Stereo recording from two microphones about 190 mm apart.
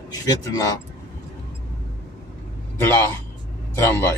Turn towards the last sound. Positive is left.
turn(degrees=15)  # may be behind; listen again after turning